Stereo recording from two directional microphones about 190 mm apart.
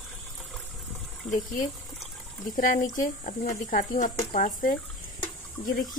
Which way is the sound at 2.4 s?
45° left (ahead or behind).